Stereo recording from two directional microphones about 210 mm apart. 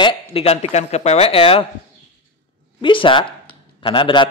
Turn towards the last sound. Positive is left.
turn(degrees=20)  # may be behind; listen again after turning